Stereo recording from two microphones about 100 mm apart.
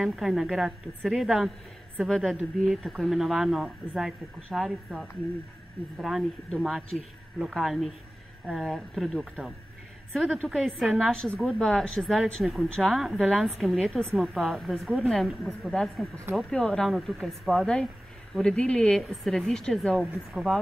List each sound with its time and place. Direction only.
0.0 s a woman's voice: 5° right (ahead or behind)
10.4 s a woman's voice: 5° left (ahead or behind)